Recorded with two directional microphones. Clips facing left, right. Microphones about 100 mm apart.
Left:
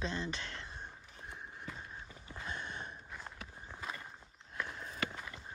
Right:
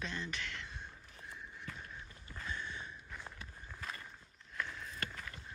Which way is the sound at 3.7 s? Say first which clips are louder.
Left 2 dB; 20° left (ahead or behind).